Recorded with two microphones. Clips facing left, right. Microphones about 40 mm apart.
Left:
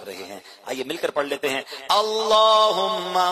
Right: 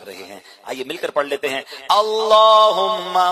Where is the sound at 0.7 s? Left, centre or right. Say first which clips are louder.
Right 1 dB; centre.